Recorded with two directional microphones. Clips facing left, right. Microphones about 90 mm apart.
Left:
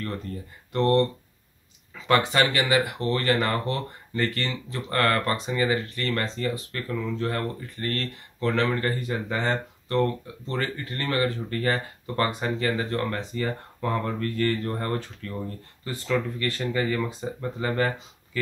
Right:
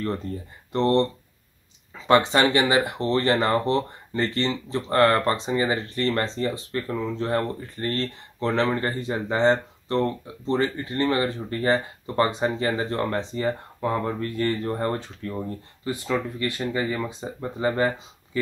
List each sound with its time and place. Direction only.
0.7 s speech: 20° right (ahead or behind)
2.0 s speech: 25° right (ahead or behind)